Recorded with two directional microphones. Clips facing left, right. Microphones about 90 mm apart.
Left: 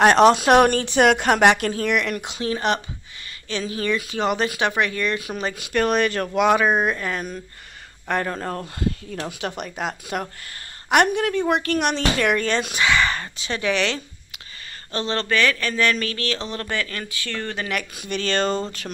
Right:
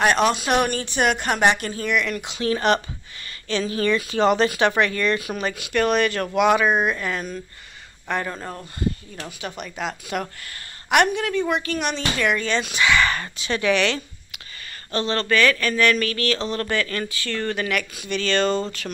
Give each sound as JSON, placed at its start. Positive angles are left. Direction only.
{"t": 0.1, "sound": "speech", "side_deg": 30}
{"t": 0.4, "sound": "a woman's voice", "side_deg": 75}
{"t": 2.1, "sound": "speech", "side_deg": 45}
{"t": 2.4, "sound": "speech", "side_deg": 20}
{"t": 5.5, "sound": "speech", "side_deg": 35}
{"t": 9.7, "sound": "speech", "side_deg": 45}
{"t": 12.8, "sound": "speech", "side_deg": 25}
{"t": 17.6, "sound": "speech", "side_deg": 35}